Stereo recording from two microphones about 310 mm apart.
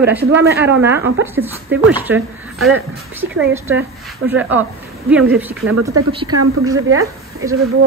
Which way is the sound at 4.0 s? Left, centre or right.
Centre.